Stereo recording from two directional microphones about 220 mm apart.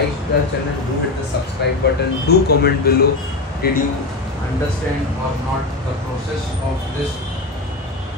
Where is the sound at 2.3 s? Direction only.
45° left (ahead or behind).